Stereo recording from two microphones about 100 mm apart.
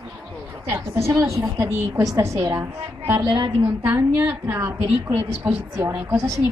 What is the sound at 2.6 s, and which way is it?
A woman's voice, 20° right (ahead or behind).